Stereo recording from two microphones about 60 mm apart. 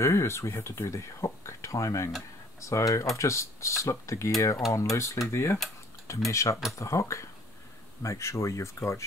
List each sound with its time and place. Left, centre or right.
0.0 s speech: left